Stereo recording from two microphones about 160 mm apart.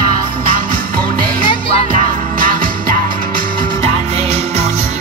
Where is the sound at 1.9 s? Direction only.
60° right (ahead or behind).